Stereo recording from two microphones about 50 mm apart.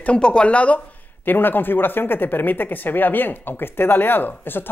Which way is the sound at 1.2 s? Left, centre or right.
Left.